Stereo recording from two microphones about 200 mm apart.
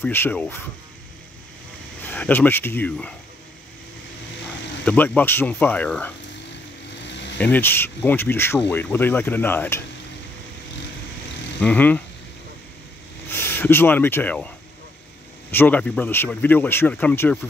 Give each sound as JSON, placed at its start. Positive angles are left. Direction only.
{"t": 0.0, "sound": "speech", "side_deg": 10}
{"t": 2.0, "sound": "speech", "side_deg": 10}
{"t": 4.8, "sound": "speech", "side_deg": 10}
{"t": 7.1, "sound": "a sound", "side_deg": 60}
{"t": 7.3, "sound": "speech", "side_deg": 10}
{"t": 11.6, "sound": "speech", "side_deg": 5}
{"t": 13.3, "sound": "speech", "side_deg": 10}
{"t": 15.5, "sound": "speech", "side_deg": 10}